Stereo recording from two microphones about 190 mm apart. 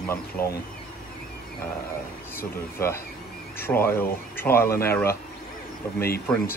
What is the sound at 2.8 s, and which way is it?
Speech, 10° left (ahead or behind).